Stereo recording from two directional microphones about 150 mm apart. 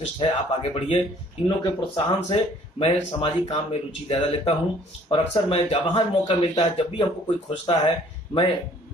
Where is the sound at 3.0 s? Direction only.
35° left (ahead or behind).